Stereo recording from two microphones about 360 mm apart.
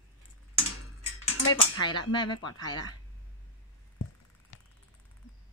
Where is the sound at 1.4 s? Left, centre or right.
Left.